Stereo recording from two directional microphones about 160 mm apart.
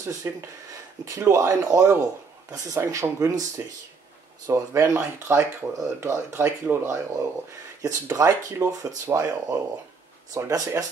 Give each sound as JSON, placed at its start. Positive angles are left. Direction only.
{"t": 0.0, "sound": "speech", "side_deg": -20}